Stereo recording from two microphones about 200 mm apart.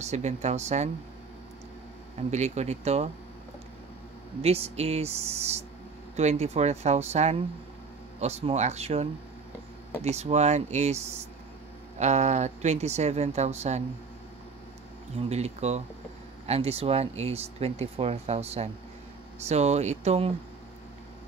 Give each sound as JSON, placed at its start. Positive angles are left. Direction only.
{"t": 0.0, "sound": "speech", "side_deg": -35}
{"t": 2.1, "sound": "speech", "side_deg": -35}
{"t": 4.4, "sound": "speech", "side_deg": -30}
{"t": 15.1, "sound": "speech", "side_deg": -30}